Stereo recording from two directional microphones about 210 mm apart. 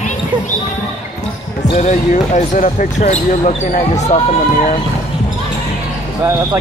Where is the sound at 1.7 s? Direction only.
35° left (ahead or behind).